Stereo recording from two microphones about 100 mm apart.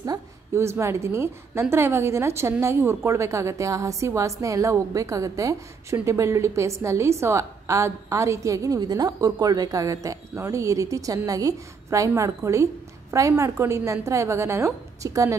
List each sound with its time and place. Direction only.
0.6 s a woman's voice: 25° right (ahead or behind)